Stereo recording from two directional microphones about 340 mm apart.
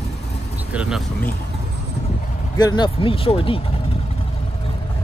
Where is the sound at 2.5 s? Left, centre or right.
Centre.